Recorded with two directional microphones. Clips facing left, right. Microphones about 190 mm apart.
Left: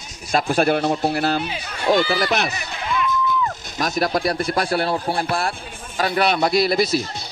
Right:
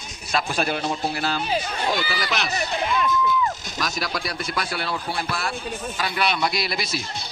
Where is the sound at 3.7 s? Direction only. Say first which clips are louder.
Left 7 dB; 55° left (ahead or behind).